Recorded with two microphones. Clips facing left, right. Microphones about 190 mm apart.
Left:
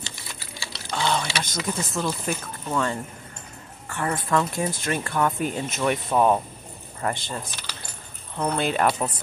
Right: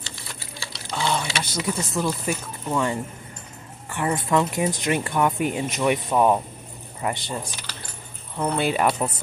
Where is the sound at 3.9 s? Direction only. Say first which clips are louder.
Right 2 dB; 15° right (ahead or behind).